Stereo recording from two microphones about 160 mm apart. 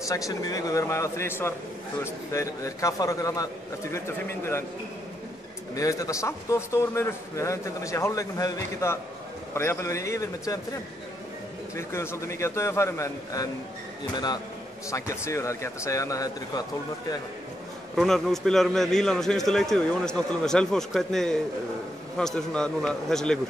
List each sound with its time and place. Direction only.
0.1 s a man's voice: 20° left (ahead or behind)
5.8 s a man's voice: 20° left (ahead or behind)
11.7 s a man's voice: 15° left (ahead or behind)
14.9 s a man's voice: 20° left (ahead or behind)
17.9 s a man's voice: centre (ahead or behind)